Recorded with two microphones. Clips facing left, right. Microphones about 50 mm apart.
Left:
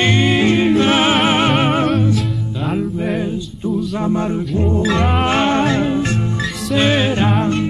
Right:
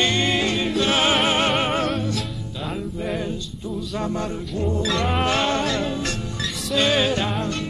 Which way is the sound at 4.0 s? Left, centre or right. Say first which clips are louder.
Left 6 dB; left.